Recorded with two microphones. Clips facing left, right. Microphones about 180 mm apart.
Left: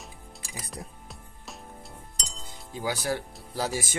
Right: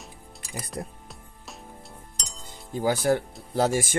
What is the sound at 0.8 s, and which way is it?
Speech, 60° right (ahead or behind).